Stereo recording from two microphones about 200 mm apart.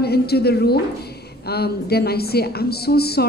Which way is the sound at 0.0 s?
55° left (ahead or behind).